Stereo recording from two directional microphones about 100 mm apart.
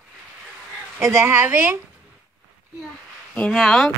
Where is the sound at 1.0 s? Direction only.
30° right (ahead or behind).